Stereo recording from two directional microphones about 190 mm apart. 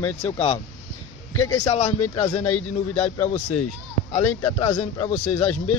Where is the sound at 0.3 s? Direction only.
35° left (ahead or behind).